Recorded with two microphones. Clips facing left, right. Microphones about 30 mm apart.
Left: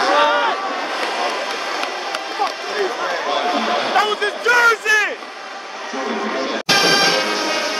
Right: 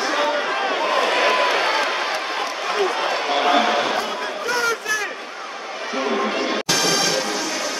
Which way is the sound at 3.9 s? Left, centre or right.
Left.